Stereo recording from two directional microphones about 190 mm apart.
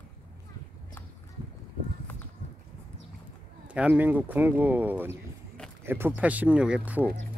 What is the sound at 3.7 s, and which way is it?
Speech, 5° right (ahead or behind).